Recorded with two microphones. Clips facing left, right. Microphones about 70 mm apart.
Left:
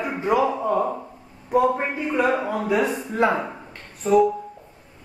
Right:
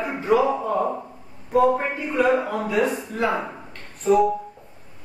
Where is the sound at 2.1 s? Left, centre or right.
Centre.